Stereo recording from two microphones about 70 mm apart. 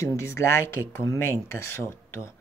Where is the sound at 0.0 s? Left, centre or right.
Left.